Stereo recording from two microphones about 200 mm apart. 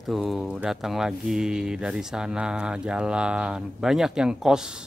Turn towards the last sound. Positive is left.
turn(degrees=-5)  # may be behind; listen again after turning